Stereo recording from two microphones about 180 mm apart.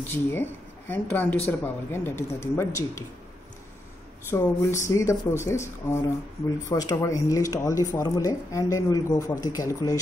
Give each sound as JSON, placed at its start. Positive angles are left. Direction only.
{"t": 0.1, "sound": "speech", "side_deg": 10}
{"t": 4.3, "sound": "speech", "side_deg": 15}